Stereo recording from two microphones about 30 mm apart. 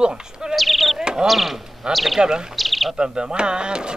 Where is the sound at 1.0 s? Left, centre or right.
Right.